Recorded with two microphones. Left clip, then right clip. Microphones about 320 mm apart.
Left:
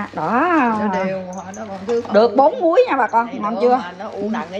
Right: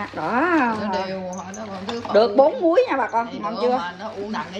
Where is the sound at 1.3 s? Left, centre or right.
Centre.